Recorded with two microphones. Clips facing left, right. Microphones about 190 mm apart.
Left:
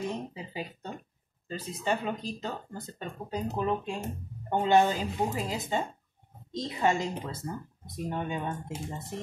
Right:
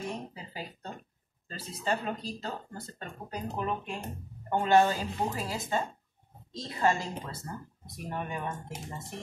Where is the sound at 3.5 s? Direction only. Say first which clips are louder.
Left 3 dB; 25° left (ahead or behind).